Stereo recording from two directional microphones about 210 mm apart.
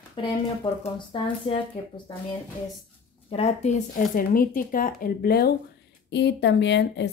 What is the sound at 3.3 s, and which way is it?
Speech, 30° left (ahead or behind).